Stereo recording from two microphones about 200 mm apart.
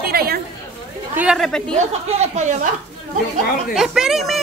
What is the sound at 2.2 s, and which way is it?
Speech, 35° right (ahead or behind).